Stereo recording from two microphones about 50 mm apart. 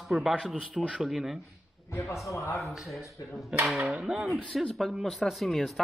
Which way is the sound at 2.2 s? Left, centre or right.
Left.